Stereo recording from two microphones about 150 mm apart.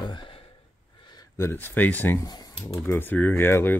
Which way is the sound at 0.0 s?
30° left (ahead or behind).